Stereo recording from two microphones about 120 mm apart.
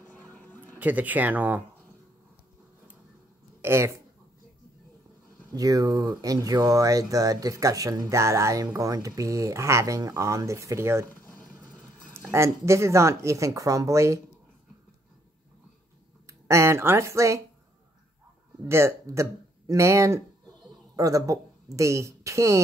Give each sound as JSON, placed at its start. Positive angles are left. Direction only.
{"t": 0.1, "sound": "a sound", "side_deg": 15}
{"t": 0.7, "sound": "speech", "side_deg": -15}
{"t": 3.6, "sound": "speech", "side_deg": -20}
{"t": 5.5, "sound": "speech", "side_deg": -30}
{"t": 12.1, "sound": "speech", "side_deg": -20}
{"t": 16.3, "sound": "speech", "side_deg": -25}
{"t": 18.6, "sound": "speech", "side_deg": -20}